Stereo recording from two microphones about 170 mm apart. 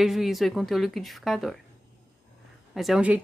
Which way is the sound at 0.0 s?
Centre (ahead or behind).